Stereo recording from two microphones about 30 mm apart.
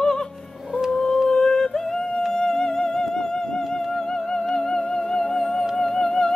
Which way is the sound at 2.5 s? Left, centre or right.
Left.